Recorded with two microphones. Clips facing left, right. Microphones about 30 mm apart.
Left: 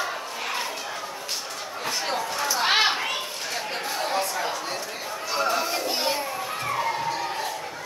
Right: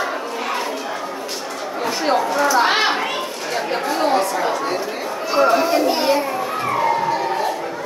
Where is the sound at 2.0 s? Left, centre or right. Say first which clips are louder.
Right 12 dB; right.